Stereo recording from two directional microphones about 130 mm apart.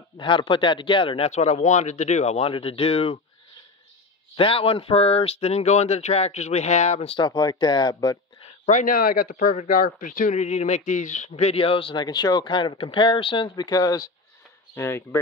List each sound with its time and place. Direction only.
0.2 s speech: 40° left (ahead or behind)
4.4 s speech: 45° left (ahead or behind)
7.2 s speech: 30° left (ahead or behind)
8.6 s speech: 85° left; by 15.1 s 20° left (ahead or behind)